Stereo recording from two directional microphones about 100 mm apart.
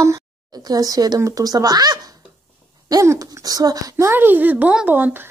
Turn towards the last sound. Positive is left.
turn(degrees=-20)  # may be behind; listen again after turning